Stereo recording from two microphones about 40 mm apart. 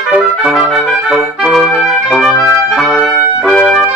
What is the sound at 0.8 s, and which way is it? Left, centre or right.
Music, right.